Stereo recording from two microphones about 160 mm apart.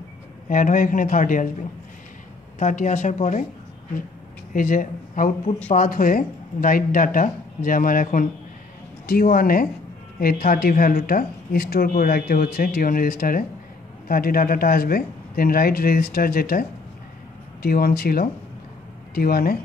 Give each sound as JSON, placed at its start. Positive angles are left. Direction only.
{"t": 0.5, "sound": "speech", "side_deg": 55}
{"t": 4.6, "sound": "speech", "side_deg": 55}